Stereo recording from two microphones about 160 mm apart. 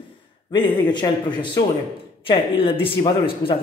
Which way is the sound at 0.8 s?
30° left (ahead or behind).